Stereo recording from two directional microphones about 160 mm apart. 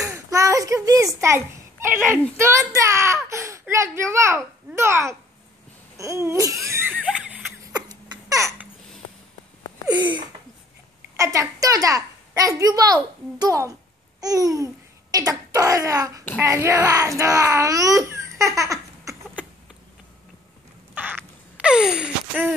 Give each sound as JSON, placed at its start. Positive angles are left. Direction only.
{"t": 0.0, "sound": "a sound", "side_deg": -20}
{"t": 1.9, "sound": "a child's voice", "side_deg": -15}
{"t": 6.9, "sound": "a sound", "side_deg": -5}
{"t": 7.7, "sound": "crying", "side_deg": -25}
{"t": 11.1, "sound": "a child's voice", "side_deg": -20}
{"t": 21.5, "sound": "sigh", "side_deg": -5}